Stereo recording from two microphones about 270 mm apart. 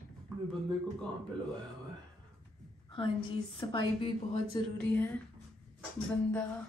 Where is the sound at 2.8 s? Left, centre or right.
Centre.